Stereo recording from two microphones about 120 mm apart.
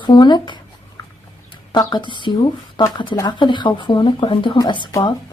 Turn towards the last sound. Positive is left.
turn(degrees=40)  # may be behind; listen again after turning